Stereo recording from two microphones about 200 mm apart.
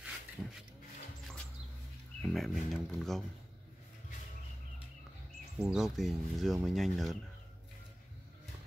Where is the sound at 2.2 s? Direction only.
Centre (ahead or behind).